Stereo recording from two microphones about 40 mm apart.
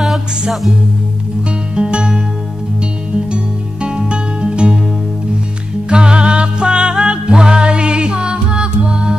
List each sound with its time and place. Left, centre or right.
1.8 s music: right
3.3 s music: right
5.9 s music: right